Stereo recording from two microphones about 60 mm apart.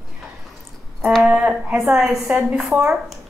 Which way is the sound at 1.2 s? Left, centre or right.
Centre.